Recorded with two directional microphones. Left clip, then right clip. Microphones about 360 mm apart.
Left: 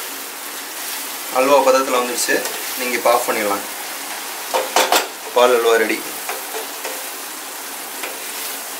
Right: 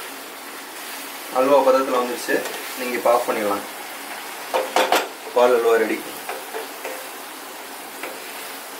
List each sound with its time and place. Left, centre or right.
1.3 s speech: centre
4.5 s a sound: centre
5.4 s speech: centre